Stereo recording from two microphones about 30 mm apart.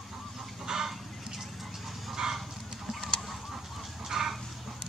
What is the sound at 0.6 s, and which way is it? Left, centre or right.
Chicken, centre.